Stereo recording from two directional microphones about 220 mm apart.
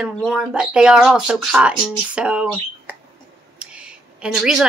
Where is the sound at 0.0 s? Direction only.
Centre (ahead or behind).